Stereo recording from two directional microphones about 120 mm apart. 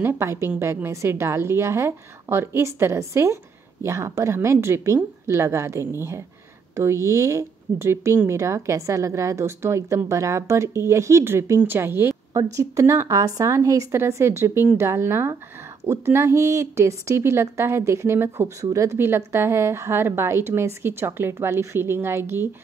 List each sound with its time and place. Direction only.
0.0 s a woman's voice: 20° right (ahead or behind)